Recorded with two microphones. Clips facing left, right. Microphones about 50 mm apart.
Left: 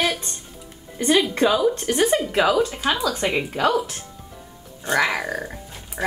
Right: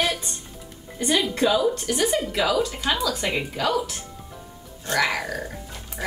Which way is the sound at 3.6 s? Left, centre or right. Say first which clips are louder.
Left 4 dB; left.